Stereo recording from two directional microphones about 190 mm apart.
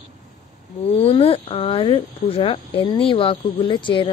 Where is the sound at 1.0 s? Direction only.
30° left (ahead or behind).